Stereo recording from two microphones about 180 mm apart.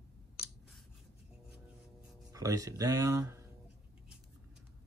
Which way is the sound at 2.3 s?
20° right (ahead or behind).